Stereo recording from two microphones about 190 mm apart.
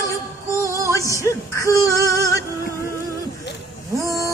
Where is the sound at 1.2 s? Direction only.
15° left (ahead or behind).